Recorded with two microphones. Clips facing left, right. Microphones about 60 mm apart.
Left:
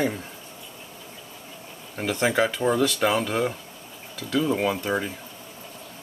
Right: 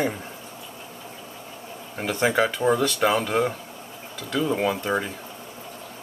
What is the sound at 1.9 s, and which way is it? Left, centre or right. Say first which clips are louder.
Speech: right 1 dB; centre.